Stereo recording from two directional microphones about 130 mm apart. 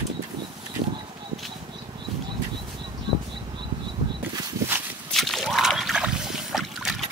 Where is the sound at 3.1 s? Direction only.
40° right (ahead or behind).